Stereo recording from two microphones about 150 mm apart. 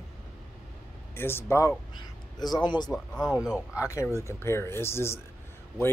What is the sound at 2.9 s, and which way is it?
Speech, centre (ahead or behind).